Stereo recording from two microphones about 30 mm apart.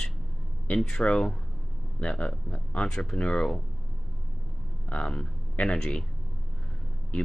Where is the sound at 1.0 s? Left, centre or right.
Left.